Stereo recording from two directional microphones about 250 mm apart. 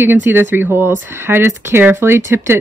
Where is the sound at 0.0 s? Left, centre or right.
Centre.